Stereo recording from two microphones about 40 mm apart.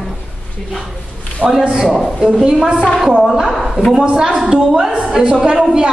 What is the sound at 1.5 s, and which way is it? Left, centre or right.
A woman's voice, centre.